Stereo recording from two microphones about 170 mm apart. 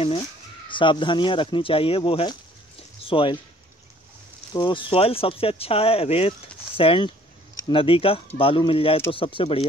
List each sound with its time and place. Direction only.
0.0 s speech: 35° left (ahead or behind)
4.6 s speech: 30° left (ahead or behind)